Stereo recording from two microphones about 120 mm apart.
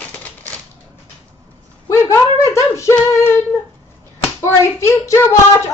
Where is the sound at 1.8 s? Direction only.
25° left (ahead or behind).